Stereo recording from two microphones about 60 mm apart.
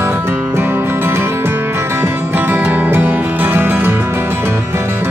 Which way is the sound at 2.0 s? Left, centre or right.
Right.